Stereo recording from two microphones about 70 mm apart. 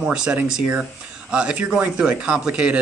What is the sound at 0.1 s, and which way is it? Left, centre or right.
A man's voice, centre.